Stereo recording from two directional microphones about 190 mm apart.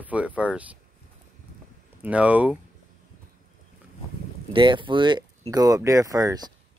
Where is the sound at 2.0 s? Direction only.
5° right (ahead or behind).